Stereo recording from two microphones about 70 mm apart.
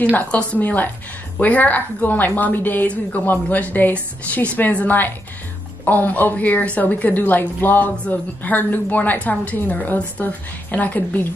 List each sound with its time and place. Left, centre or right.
0.1 s a woman's voice: left